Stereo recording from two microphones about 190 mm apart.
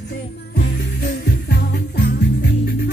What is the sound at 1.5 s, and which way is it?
Music, 60° left (ahead or behind).